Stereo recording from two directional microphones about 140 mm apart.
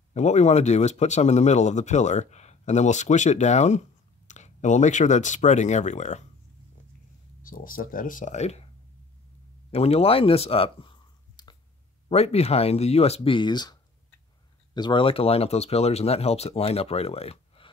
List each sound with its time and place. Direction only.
0.1 s speech: 55° left (ahead or behind)
7.4 s speech: 85° left; by 8.6 s 50° left (ahead or behind)
9.7 s speech: 45° left (ahead or behind)
12.1 s speech: 50° left (ahead or behind)